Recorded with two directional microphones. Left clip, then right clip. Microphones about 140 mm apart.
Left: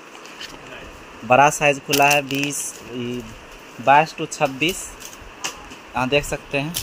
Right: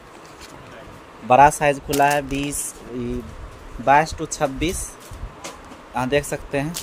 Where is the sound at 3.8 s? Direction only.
5° right (ahead or behind).